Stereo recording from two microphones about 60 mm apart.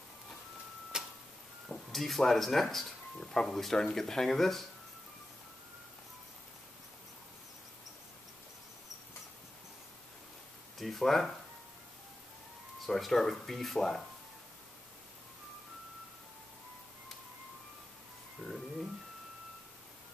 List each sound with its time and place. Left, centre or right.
0.9 s tick-tock: centre
1.7 s speech: centre
10.8 s speech: centre
12.8 s speech: centre
18.4 s a sound: left